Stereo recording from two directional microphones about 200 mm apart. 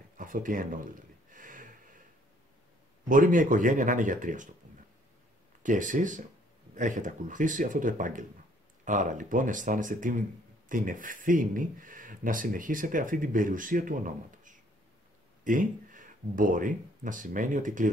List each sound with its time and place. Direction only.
0.2 s a sound: 40° right (ahead or behind)
3.1 s speech: 40° right (ahead or behind)
5.6 s speech: 40° right (ahead or behind)